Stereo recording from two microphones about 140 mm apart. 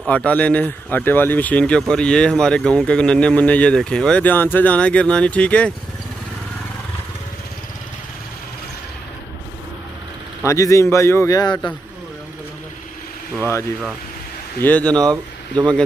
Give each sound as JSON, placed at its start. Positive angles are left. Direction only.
{"t": 0.0, "sound": "speech", "side_deg": 10}
{"t": 10.4, "sound": "a man's voice", "side_deg": 20}
{"t": 14.6, "sound": "speech", "side_deg": 10}